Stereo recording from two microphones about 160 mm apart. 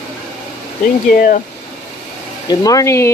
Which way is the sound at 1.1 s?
60° left (ahead or behind).